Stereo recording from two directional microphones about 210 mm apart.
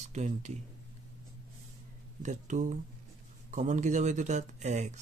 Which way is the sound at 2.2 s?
35° right (ahead or behind).